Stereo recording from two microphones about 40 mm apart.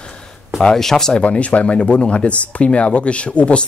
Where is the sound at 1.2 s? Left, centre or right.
Left.